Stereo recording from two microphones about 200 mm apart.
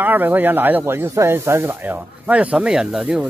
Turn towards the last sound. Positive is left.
turn(degrees=-5)  # may be behind; listen again after turning